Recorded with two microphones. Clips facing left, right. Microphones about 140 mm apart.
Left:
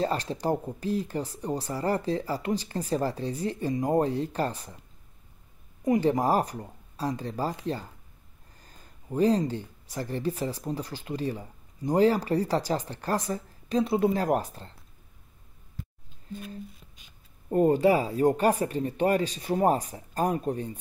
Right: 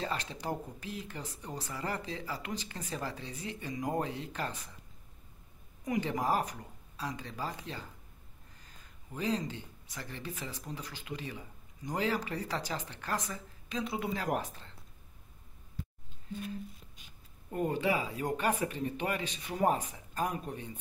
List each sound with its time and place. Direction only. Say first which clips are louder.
0.0 s speech: left 9 dB; 40° left (ahead or behind)
5.9 s speech: left 8 dB; 35° left (ahead or behind)
17.5 s speech: left 10 dB; 40° left (ahead or behind)